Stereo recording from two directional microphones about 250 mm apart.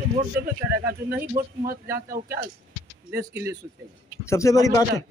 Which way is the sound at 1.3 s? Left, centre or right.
Right.